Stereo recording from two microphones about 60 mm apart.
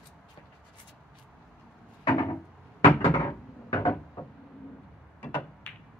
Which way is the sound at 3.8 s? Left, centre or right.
Left.